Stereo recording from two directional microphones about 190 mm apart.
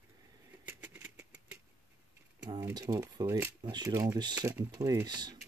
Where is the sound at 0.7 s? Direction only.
10° right (ahead or behind).